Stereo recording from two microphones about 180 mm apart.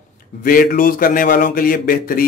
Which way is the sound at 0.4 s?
50° left (ahead or behind).